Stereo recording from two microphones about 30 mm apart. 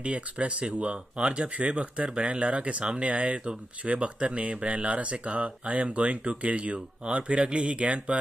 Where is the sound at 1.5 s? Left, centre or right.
Right.